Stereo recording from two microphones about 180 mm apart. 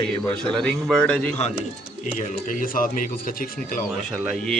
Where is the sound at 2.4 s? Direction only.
50° left (ahead or behind).